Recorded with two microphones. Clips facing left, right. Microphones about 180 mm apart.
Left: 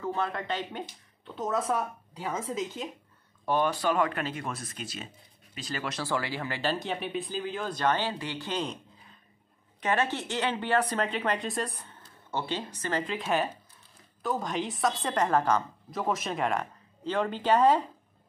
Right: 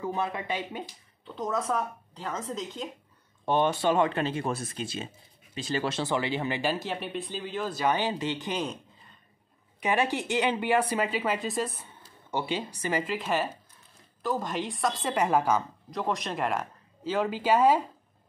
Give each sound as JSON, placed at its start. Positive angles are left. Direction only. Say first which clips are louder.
{"t": 0.0, "sound": "a woman's voice", "louder": "even", "side_deg": -10}
{"t": 3.4, "sound": "speech", "louder": "right 2 dB", "side_deg": -25}
{"t": 6.7, "sound": "a woman's voice", "louder": "even", "side_deg": 0}
{"t": 9.8, "sound": "speech", "louder": "right 1 dB", "side_deg": -10}
{"t": 12.3, "sound": "a woman's voice", "louder": "right 2 dB", "side_deg": -10}